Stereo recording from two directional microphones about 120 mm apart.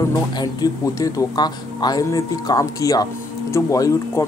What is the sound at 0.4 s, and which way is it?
Speech, 30° left (ahead or behind).